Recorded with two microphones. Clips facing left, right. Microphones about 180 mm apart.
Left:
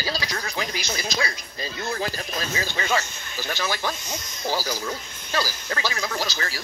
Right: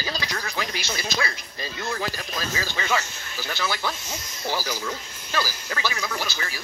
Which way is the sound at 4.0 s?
5° right (ahead or behind).